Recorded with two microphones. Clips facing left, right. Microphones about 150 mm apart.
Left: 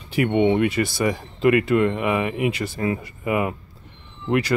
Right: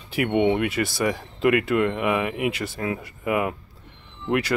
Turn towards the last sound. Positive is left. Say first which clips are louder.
# left 2 dB
turn(degrees=0)  # may be behind; listen again after turning